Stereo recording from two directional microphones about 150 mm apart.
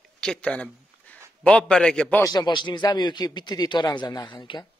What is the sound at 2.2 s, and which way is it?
Speech, 25° left (ahead or behind).